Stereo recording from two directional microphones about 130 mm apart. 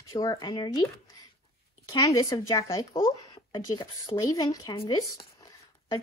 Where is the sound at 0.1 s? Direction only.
25° left (ahead or behind).